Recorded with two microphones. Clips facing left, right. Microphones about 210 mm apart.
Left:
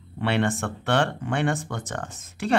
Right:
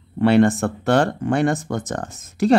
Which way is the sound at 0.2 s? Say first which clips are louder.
Right 9 dB; 40° right (ahead or behind).